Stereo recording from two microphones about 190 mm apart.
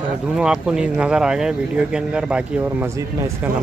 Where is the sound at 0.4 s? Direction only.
5° right (ahead or behind).